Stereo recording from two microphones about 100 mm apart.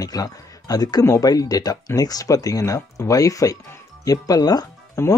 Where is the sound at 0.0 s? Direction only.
40° left (ahead or behind).